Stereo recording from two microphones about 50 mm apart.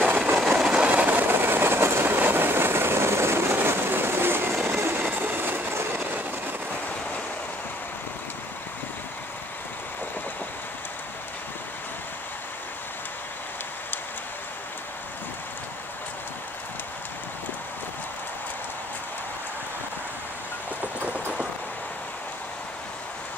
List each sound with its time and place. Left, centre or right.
0.0 s train: right
0.6 s train: centre
0.8 s train: right
1.3 s train: right
3.5 s train: right